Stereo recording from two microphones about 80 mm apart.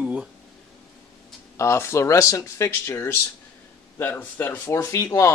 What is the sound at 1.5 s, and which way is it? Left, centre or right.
Speech, left.